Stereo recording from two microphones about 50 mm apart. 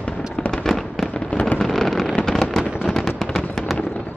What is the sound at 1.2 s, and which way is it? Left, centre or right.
Fireworks, left.